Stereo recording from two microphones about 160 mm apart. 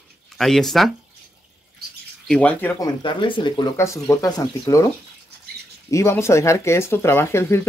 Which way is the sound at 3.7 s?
20° left (ahead or behind).